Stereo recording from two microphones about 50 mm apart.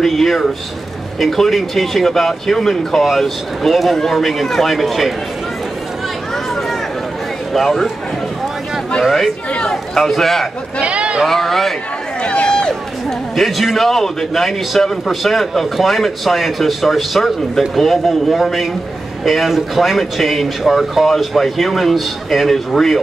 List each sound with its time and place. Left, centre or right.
0.0 s a man's voice: centre
7.5 s a man's voice: centre
9.5 s speech: left
9.9 s a man's voice: centre
10.8 s a sound: right
11.2 s a man's voice: centre
12.2 s run: left
13.4 s a man's voice: centre